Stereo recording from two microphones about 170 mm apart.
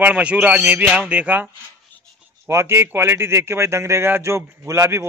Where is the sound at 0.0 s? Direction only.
10° right (ahead or behind).